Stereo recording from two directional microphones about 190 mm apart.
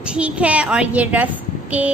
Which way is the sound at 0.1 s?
5° right (ahead or behind).